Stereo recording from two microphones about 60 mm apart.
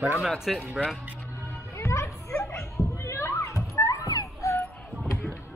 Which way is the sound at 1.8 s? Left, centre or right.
Left.